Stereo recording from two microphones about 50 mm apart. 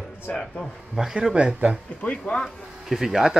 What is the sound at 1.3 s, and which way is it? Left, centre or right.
Speech, right.